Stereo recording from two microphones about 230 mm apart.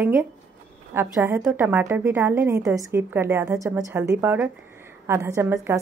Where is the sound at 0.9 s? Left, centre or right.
Centre.